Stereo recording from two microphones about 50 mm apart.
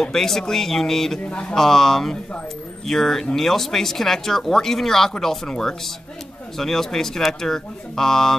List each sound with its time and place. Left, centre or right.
0.0 s speech: centre
1.2 s speech: left
1.5 s speech: centre